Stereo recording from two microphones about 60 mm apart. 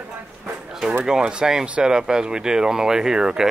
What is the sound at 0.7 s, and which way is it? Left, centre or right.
Speech, centre.